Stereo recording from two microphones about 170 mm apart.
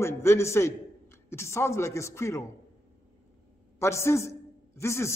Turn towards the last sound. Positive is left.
turn(degrees=15)  # may be behind; listen again after turning